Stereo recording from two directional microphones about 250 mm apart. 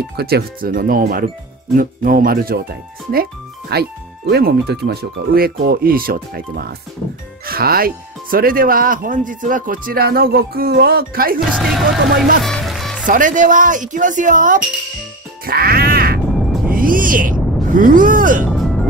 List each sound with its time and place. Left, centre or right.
0.1 s speech: right
11.4 s speech: centre
12.4 s music: centre
13.0 s speech: right
15.4 s music: right
16.7 s speech: right
18.5 s music: centre